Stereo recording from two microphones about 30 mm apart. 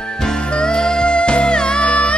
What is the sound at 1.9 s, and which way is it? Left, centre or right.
Music, left.